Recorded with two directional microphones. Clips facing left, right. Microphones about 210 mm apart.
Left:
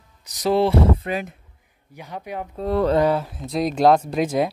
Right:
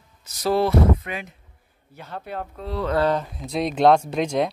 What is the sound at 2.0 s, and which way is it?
Speech, 15° left (ahead or behind).